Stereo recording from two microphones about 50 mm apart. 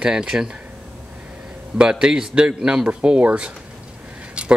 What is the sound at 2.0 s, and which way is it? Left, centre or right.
Speech, centre.